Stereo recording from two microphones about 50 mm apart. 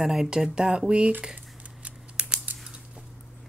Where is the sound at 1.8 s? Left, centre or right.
Centre.